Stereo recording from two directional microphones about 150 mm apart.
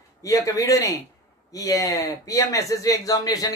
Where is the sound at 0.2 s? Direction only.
20° left (ahead or behind).